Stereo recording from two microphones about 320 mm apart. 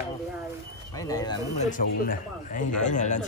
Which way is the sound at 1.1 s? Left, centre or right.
Centre.